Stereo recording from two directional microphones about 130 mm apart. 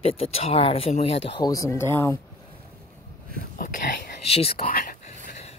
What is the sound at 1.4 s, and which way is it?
Speech, 25° left (ahead or behind).